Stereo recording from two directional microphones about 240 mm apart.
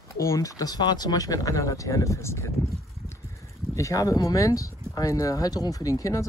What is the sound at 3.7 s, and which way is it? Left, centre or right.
Speech, centre.